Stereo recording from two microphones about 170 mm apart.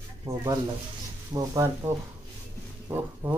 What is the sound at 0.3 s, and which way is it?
Speech, 35° right (ahead or behind).